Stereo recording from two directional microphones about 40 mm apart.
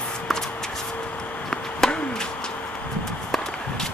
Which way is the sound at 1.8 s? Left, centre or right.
Centre.